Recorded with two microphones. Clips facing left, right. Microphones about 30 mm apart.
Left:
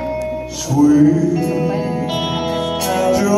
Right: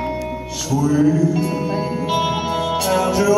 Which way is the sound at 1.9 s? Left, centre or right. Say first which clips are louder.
Left 1 dB; centre.